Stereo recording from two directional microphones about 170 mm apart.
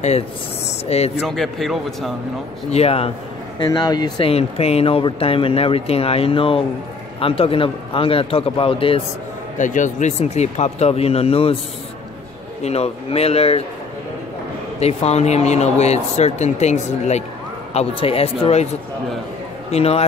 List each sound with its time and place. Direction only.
0.8 s speech: 40° left (ahead or behind)
1.2 s speech: centre (ahead or behind)
2.7 s speech: 35° left (ahead or behind)
3.5 s speech: 25° left (ahead or behind)
4.3 s speech: 35° left (ahead or behind)
9.6 s speech: 50° left (ahead or behind)
12.6 s speech: 35° left (ahead or behind)
14.8 s speech: 40° left (ahead or behind)
19.7 s speech: 35° left (ahead or behind)